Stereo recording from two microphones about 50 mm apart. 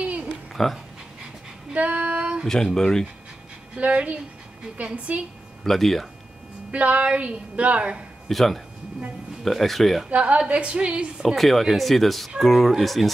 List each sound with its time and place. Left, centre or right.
0.5 s a sound: centre
1.7 s female singing: right
2.4 s speech: centre
3.7 s a woman's voice: right
5.6 s speech: centre
6.7 s a woman's voice: right
8.3 s speech: centre
10.0 s a woman's voice: right
11.3 s speech: centre